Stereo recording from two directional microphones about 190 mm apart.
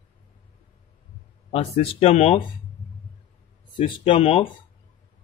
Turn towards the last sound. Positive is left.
turn(degrees=30)  # may be behind; listen again after turning